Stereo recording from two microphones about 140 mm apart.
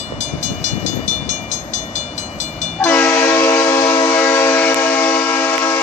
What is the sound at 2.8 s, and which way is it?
Train, 15° left (ahead or behind).